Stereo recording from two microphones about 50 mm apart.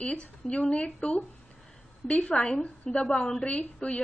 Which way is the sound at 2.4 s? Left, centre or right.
Left.